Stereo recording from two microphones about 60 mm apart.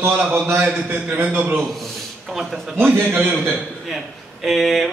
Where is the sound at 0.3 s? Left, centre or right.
Right.